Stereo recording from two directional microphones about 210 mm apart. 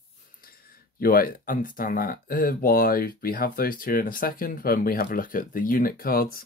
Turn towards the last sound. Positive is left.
turn(degrees=45)  # may be behind; listen again after turning